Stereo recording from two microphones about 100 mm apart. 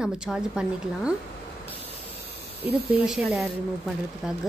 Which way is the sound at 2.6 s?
75° right (ahead or behind).